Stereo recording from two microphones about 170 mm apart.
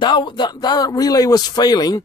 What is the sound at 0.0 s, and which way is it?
A man's voice, 25° left (ahead or behind).